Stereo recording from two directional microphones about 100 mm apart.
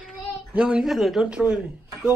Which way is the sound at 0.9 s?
Centre (ahead or behind).